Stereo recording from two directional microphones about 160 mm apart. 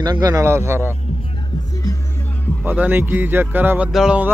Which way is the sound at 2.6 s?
10° right (ahead or behind).